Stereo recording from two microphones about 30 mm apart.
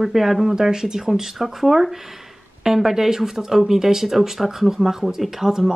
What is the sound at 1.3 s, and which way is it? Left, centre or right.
Speech, centre.